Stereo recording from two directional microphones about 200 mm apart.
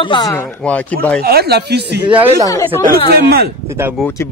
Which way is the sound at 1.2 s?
50° right (ahead or behind).